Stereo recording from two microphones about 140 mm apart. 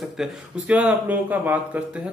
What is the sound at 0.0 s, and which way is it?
Speech, centre (ahead or behind).